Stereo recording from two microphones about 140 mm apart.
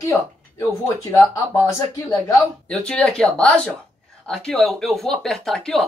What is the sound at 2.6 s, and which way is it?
Speech, 5° left (ahead or behind).